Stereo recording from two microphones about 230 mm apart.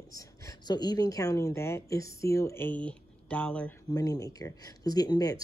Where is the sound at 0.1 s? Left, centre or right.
Centre.